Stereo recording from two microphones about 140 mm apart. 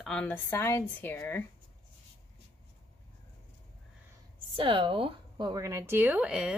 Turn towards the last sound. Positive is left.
turn(degrees=-5)  # may be behind; listen again after turning